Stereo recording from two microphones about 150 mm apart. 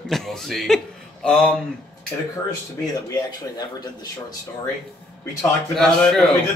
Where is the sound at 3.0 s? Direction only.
25° left (ahead or behind).